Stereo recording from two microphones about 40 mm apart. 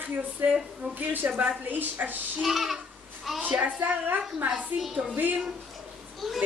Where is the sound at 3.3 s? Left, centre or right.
Centre.